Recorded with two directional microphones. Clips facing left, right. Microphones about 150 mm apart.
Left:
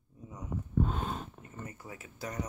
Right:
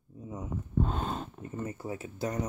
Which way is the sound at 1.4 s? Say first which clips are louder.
Right 9 dB; 30° right (ahead or behind).